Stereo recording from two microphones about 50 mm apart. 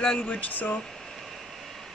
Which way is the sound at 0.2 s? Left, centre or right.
Left.